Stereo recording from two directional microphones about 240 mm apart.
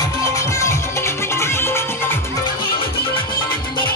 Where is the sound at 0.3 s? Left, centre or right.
Centre.